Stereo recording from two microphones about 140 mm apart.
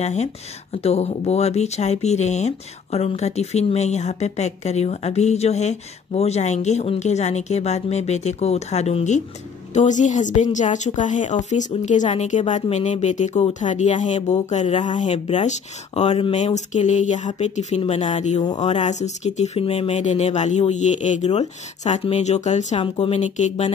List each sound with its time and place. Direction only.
0.0 s speech: 55° left (ahead or behind)